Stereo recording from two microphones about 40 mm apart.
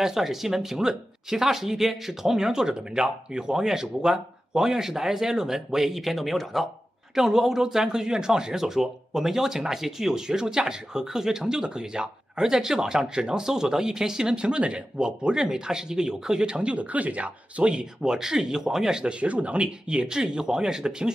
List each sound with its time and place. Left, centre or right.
0.0 s speech: centre
7.2 s speech: centre